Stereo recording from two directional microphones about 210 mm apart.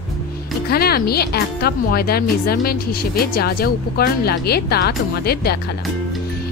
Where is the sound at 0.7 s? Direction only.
45° left (ahead or behind).